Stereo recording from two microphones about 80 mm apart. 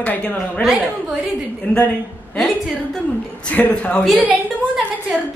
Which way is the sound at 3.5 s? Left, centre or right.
Centre.